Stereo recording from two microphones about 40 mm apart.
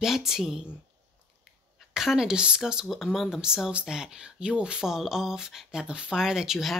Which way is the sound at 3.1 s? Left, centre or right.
Centre.